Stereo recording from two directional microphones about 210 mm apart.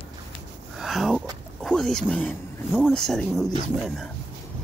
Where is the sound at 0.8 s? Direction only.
Centre (ahead or behind).